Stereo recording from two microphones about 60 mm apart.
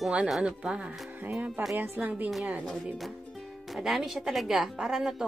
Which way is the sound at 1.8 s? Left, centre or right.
Right.